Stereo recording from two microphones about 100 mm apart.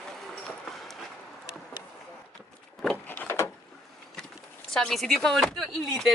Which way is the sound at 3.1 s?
20° left (ahead or behind).